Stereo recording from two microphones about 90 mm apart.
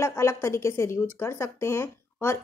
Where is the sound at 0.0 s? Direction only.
30° left (ahead or behind).